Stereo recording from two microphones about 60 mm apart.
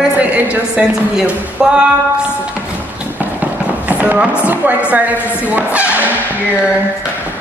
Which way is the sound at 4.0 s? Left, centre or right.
Right.